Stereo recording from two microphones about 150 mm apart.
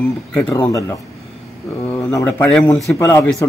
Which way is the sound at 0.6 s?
20° left (ahead or behind).